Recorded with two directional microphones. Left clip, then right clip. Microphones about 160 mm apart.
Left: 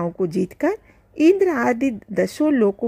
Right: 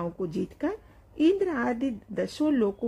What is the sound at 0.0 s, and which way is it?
A woman's voice, 30° left (ahead or behind).